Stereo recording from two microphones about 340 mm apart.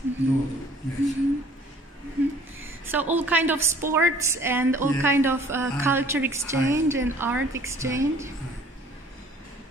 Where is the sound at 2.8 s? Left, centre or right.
Centre.